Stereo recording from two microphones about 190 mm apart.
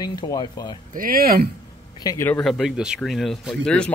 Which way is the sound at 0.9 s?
50° right (ahead or behind).